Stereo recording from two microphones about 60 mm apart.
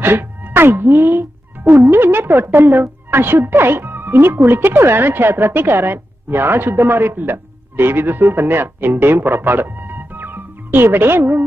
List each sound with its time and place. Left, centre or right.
0.0 s music: right
1.9 s speech: right